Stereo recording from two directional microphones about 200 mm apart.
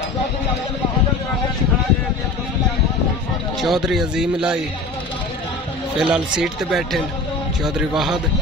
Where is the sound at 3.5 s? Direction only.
Centre (ahead or behind).